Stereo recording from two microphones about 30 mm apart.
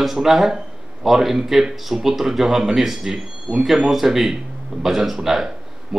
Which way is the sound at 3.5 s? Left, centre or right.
Right.